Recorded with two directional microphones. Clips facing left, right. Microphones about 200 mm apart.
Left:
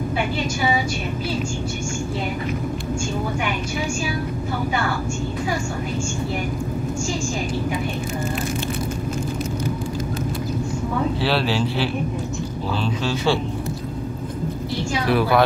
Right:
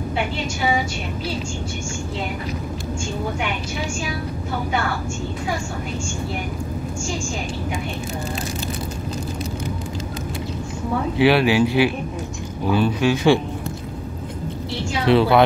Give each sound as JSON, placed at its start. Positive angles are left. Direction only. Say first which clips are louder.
{"t": 11.1, "sound": "speech", "louder": "right 6 dB", "side_deg": -15}
{"t": 15.0, "sound": "speech", "louder": "right 4 dB", "side_deg": -25}